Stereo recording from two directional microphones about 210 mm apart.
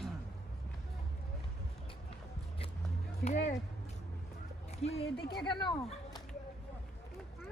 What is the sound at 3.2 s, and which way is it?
Music, 35° left (ahead or behind).